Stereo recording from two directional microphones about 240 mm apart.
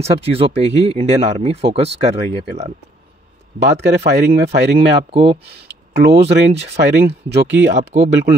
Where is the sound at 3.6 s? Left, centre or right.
Right.